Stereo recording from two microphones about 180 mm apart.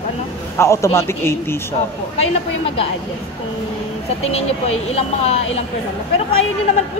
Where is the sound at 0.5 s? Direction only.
15° left (ahead or behind).